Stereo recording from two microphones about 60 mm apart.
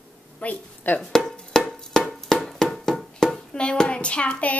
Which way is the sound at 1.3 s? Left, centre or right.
Centre.